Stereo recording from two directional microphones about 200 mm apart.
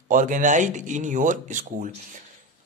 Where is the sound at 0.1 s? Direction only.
40° right (ahead or behind).